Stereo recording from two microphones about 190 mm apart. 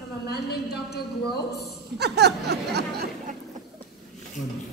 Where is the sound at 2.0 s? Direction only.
60° right (ahead or behind).